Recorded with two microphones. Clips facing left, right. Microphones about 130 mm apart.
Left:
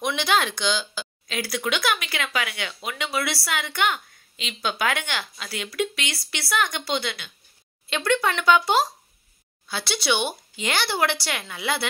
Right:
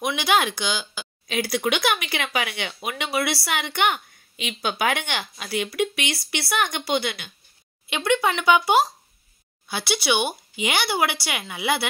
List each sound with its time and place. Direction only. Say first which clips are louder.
0.0 s speech: right 1 dB; 10° right (ahead or behind)